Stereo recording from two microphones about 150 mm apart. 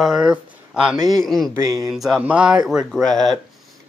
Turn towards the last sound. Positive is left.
turn(degrees=0)  # may be behind; listen again after turning